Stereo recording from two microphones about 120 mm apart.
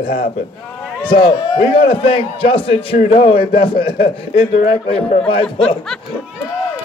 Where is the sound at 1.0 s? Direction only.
45° left (ahead or behind).